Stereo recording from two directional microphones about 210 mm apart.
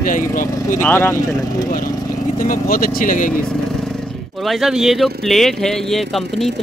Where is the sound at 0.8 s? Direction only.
10° left (ahead or behind).